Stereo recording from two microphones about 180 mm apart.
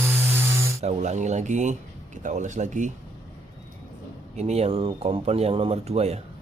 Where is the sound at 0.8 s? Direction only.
40° right (ahead or behind).